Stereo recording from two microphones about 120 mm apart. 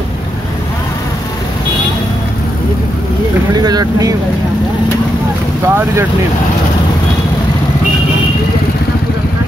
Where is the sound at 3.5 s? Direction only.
35° right (ahead or behind).